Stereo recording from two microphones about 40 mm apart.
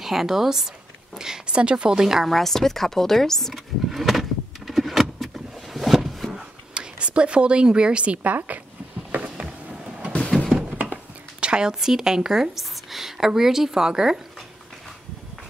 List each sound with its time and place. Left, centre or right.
0.0 s a woman's voice: centre; by 2.0 s right
2.0 s a woman's voice: centre
2.2 s speech: centre
3.5 s vehicle: centre
5.2 s a sound: centre
6.7 s speech: right
8.5 s speech: right
9.1 s a sound: right
11.4 s speech: centre